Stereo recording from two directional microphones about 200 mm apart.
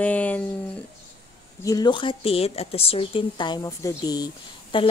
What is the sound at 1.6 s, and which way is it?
Speech, 20° left (ahead or behind).